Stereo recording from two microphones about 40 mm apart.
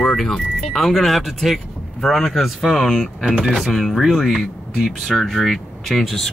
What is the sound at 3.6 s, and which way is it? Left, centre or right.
Speech, centre.